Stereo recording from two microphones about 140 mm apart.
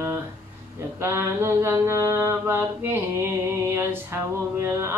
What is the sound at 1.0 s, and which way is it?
Mantra, 20° right (ahead or behind).